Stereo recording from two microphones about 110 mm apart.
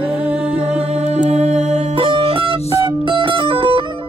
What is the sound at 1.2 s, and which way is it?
Music, 90° right.